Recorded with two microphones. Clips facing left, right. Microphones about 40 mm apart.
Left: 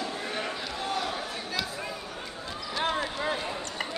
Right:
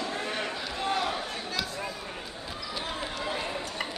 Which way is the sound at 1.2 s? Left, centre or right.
Centre.